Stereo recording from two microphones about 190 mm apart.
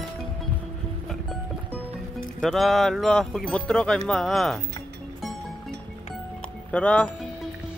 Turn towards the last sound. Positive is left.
turn(degrees=5)  # may be behind; listen again after turning